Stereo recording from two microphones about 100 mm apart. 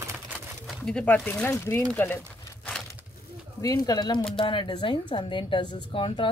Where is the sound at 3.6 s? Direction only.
35° left (ahead or behind).